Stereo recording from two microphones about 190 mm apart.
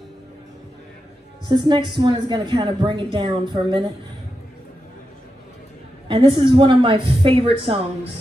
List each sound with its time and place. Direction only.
1.5 s a woman's voice: 25° right (ahead or behind)
6.0 s a woman's voice: 25° right (ahead or behind)